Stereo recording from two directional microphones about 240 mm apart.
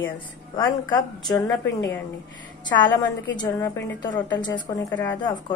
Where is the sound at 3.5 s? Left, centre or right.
Centre.